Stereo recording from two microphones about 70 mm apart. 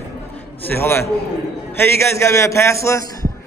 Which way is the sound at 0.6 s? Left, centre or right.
Left.